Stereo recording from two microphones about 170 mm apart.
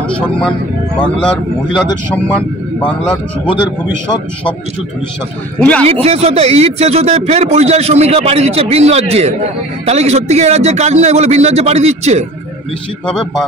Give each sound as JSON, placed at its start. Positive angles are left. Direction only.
{"t": 0.1, "sound": "speech", "side_deg": 5}
{"t": 5.6, "sound": "speech", "side_deg": 10}
{"t": 5.9, "sound": "speech", "side_deg": -35}
{"t": 13.0, "sound": "a man's voice", "side_deg": 5}